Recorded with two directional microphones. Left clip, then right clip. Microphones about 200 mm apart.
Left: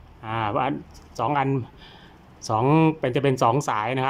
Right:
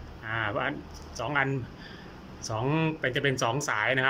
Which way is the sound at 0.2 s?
20° left (ahead or behind).